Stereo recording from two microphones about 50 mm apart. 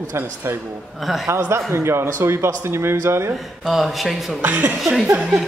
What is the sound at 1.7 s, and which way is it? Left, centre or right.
Speech, right.